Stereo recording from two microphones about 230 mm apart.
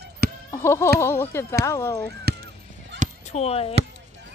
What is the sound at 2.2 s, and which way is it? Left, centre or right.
Honk, right.